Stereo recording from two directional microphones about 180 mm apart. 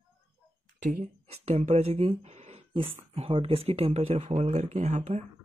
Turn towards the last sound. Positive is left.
turn(degrees=-40)  # may be behind; listen again after turning